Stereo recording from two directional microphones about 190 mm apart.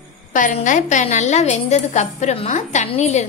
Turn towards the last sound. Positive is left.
turn(degrees=35)  # may be behind; listen again after turning